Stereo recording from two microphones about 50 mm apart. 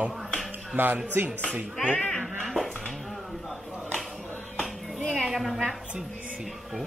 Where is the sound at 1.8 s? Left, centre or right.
Centre.